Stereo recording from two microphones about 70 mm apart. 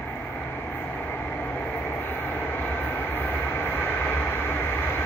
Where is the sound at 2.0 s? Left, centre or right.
Left.